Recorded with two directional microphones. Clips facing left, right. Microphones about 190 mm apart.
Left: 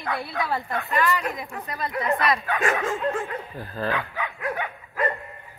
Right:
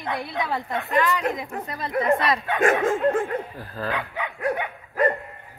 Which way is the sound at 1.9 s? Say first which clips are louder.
Right 5 dB; 50° right (ahead or behind).